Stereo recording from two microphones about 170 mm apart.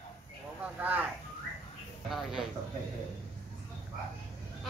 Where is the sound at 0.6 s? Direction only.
10° right (ahead or behind).